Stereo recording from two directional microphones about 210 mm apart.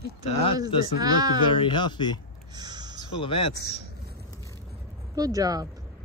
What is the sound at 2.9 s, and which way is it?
Speech, 20° left (ahead or behind).